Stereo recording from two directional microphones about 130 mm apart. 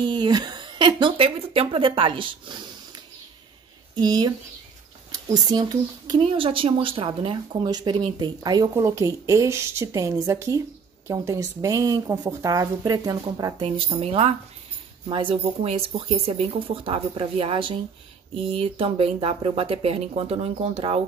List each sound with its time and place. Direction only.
0.0 s speech: 35° right (ahead or behind)
3.9 s speech: 30° right (ahead or behind)
13.7 s speech: 45° right (ahead or behind)